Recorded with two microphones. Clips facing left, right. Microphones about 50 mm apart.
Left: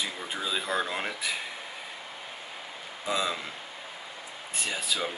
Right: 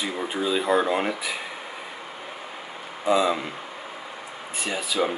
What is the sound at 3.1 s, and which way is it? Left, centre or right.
Speech, centre.